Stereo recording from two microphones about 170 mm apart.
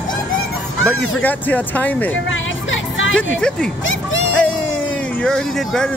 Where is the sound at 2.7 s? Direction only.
90° left.